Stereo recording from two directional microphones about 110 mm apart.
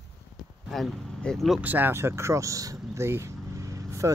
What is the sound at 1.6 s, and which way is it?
Speech, 15° right (ahead or behind).